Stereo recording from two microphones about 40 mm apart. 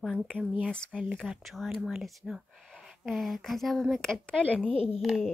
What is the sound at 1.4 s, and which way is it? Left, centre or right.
A woman's voice, centre.